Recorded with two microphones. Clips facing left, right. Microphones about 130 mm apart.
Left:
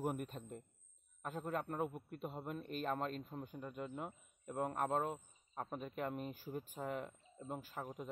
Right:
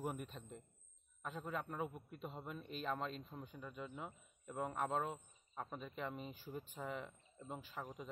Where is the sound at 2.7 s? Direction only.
50° left (ahead or behind).